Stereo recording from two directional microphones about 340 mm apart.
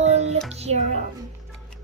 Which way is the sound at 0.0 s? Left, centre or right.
Centre.